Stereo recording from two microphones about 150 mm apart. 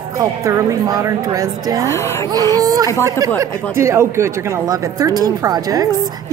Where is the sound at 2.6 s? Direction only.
25° right (ahead or behind).